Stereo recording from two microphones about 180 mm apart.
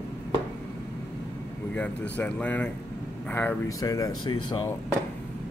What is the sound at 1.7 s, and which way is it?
Speech, 10° left (ahead or behind).